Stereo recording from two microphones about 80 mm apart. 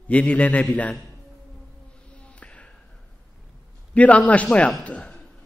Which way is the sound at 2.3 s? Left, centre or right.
Centre.